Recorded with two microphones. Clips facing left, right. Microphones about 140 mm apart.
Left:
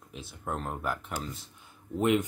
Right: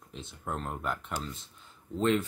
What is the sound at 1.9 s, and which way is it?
Speech, 15° left (ahead or behind).